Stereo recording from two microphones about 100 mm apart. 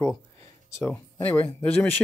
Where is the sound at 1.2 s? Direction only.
20° left (ahead or behind).